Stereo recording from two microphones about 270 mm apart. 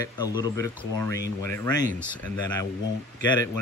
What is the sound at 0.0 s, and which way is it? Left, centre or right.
Speech, centre.